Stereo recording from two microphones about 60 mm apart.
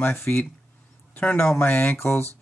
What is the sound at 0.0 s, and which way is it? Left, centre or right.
A man's voice, left.